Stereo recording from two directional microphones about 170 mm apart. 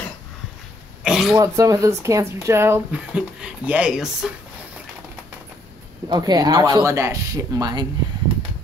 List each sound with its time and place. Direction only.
1.0 s throat clearing: centre (ahead or behind)
1.3 s speech: 20° right (ahead or behind); by 4.3 s 5° right (ahead or behind)
6.0 s speech: 25° right (ahead or behind)